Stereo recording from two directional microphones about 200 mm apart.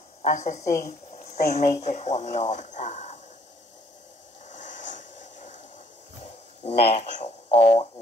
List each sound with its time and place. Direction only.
0.2 s a woman's voice: 35° left (ahead or behind)
4.5 s a sound: 35° left (ahead or behind)
6.6 s speech: 30° left (ahead or behind)